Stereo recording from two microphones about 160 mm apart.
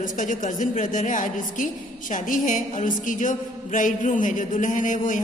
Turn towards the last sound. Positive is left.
turn(degrees=55)  # may be behind; listen again after turning